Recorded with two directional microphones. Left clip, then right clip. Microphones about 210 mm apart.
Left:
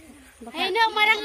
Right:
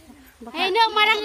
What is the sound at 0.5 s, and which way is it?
Speech, 45° right (ahead or behind).